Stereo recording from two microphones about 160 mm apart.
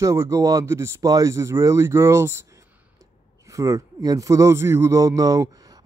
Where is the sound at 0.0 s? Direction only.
20° right (ahead or behind).